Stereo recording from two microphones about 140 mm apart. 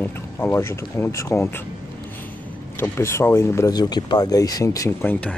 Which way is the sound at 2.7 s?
15° left (ahead or behind).